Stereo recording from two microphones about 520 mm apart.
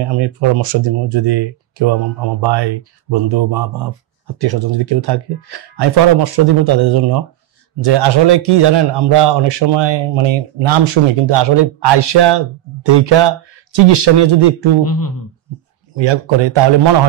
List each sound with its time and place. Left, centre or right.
0.0 s speech: right
14.9 s speech: left
15.9 s speech: right